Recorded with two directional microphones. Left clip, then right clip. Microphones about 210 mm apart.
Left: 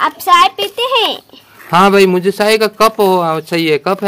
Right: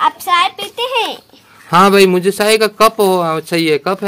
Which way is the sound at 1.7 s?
Centre (ahead or behind).